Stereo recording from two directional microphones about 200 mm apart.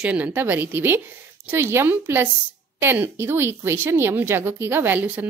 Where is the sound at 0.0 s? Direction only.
5° right (ahead or behind).